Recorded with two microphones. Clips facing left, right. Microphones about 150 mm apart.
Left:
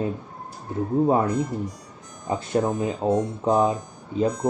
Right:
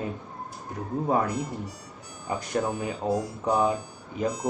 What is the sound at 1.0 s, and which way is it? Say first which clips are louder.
Speech: left 1 dB; 25° left (ahead or behind).